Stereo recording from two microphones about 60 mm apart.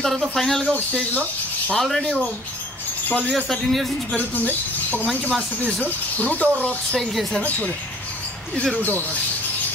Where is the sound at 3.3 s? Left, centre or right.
Centre.